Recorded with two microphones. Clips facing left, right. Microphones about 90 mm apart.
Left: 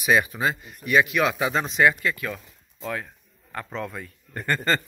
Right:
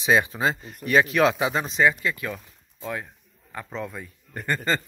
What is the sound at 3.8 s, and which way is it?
A man's voice, 10° right (ahead or behind).